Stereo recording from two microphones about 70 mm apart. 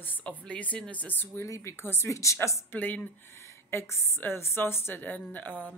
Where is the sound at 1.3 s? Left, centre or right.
Left.